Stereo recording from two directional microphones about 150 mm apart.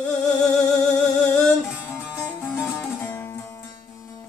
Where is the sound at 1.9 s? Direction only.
15° left (ahead or behind).